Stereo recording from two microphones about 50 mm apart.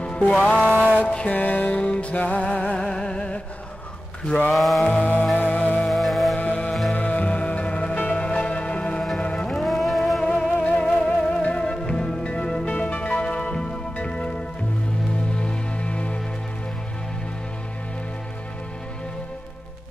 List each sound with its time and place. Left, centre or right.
0.0 s music: left
0.6 s a sound: right
1.3 s music: left; by 3.3 s centre
4.5 s a sound: centre
4.8 s music: left
5.9 s music: centre
6.3 s music: left
9.5 s music: centre
10.3 s music: left
12.6 s music: left
15.4 s music: left